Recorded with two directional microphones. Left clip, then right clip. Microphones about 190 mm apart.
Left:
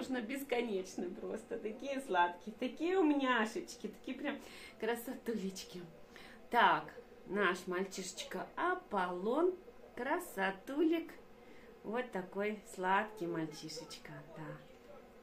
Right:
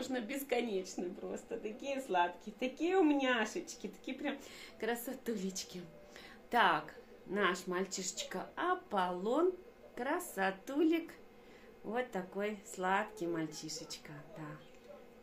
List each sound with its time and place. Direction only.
0.0 s a woman's voice: 30° right (ahead or behind)